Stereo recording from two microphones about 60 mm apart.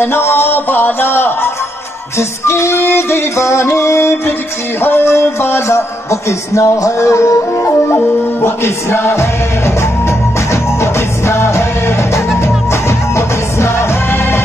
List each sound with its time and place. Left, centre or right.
0.0 s a man's voice: left
2.1 s music: left
7.6 s music: left